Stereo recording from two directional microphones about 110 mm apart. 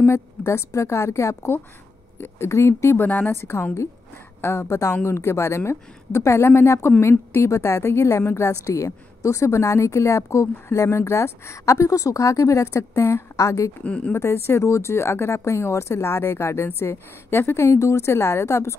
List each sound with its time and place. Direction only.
0.0 s a woman's voice: 25° left (ahead or behind)
13.8 s speech: 10° left (ahead or behind)
14.1 s a woman's voice: 25° left (ahead or behind)